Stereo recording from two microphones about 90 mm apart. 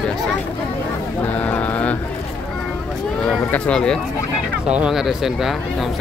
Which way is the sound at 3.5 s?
10° left (ahead or behind).